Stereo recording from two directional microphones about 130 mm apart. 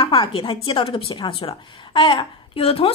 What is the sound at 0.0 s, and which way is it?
A woman's voice, 45° left (ahead or behind).